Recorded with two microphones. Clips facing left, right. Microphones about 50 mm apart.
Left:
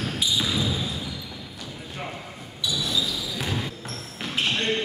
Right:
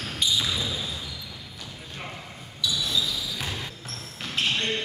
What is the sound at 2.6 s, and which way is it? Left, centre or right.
Basketball bounce, left.